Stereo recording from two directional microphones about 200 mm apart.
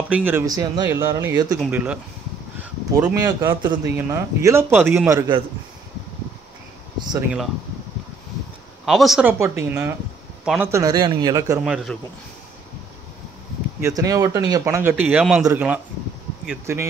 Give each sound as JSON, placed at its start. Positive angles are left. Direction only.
{"t": 0.1, "sound": "speech", "side_deg": -10}
{"t": 3.2, "sound": "speech", "side_deg": -15}
{"t": 7.0, "sound": "speech", "side_deg": -20}
{"t": 8.8, "sound": "a man's voice", "side_deg": 0}
{"t": 10.7, "sound": "a man's voice", "side_deg": -20}
{"t": 11.6, "sound": "speech", "side_deg": 0}
{"t": 13.7, "sound": "speech", "side_deg": -15}